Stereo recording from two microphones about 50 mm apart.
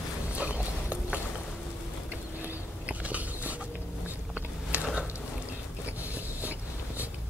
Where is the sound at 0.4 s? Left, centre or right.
Right.